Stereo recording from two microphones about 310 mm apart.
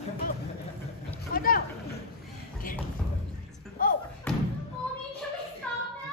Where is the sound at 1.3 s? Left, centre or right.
Left.